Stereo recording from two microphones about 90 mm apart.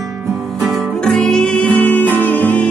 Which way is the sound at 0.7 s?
5° left (ahead or behind).